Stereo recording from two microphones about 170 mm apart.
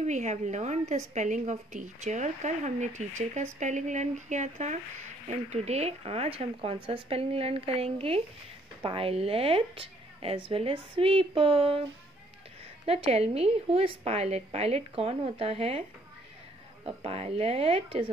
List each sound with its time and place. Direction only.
0.0 s a woman's voice: 40° right (ahead or behind)
12.8 s a woman's voice: 35° right (ahead or behind)
16.8 s a woman's voice: 35° right (ahead or behind)